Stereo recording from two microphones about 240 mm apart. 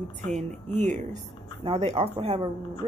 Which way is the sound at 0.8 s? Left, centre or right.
Right.